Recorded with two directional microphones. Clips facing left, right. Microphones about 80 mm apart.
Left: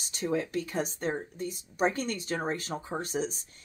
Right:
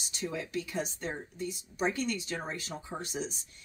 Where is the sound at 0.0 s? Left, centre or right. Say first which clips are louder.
Left 6 dB; left.